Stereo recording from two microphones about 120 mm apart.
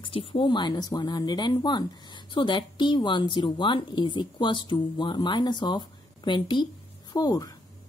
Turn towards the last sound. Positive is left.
turn(degrees=30)  # may be behind; listen again after turning